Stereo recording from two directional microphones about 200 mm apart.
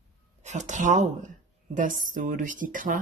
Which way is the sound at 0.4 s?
35° right (ahead or behind).